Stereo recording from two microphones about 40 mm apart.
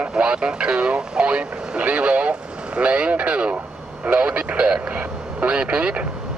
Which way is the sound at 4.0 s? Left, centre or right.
Right.